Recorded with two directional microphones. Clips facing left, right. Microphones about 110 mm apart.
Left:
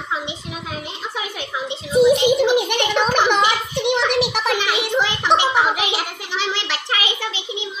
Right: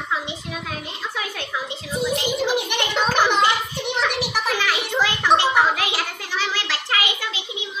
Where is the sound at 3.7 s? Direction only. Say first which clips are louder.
Left 6 dB; 70° left (ahead or behind).